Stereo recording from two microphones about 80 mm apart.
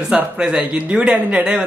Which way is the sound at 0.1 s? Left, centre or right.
Centre.